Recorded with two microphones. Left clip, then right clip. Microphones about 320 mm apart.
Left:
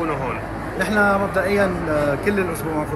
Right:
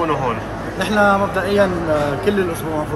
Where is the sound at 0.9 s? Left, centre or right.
Centre.